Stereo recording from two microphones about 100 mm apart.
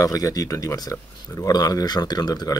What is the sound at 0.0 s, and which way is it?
Speech, 35° left (ahead or behind).